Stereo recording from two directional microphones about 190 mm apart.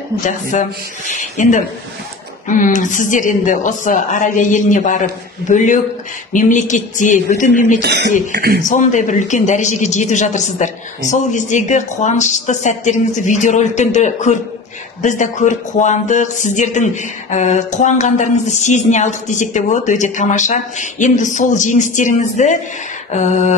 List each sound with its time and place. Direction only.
0.2 s a woman's voice: 40° left (ahead or behind)
6.3 s a woman's voice: 40° left (ahead or behind)
7.8 s a man's voice: 60° right (ahead or behind)
8.6 s speech: 40° left (ahead or behind)